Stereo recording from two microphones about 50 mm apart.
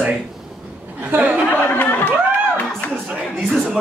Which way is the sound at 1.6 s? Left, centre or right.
Left.